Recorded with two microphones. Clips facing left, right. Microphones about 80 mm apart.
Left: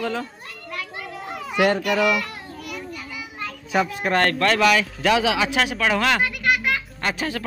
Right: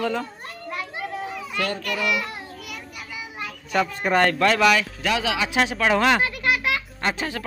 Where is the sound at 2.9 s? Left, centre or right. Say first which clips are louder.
Left 1 dB; centre.